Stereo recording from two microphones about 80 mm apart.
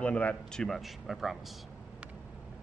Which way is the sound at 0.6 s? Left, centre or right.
Centre.